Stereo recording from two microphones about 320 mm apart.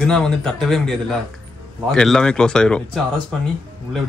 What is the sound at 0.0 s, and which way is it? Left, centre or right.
Speech, centre.